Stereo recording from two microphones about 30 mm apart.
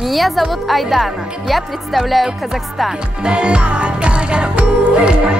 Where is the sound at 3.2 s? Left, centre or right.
Right.